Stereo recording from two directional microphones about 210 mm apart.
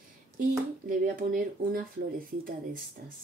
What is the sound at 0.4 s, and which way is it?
Speech, 40° right (ahead or behind).